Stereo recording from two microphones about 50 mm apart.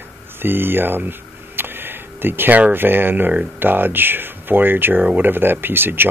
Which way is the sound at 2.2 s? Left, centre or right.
Right.